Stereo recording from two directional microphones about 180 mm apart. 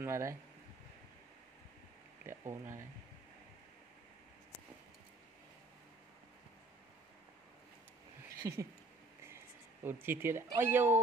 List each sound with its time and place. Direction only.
0.0 s speech: 15° right (ahead or behind)
2.2 s speech: 15° right (ahead or behind)
8.4 s speech: 15° right (ahead or behind)
9.8 s speech: 10° right (ahead or behind)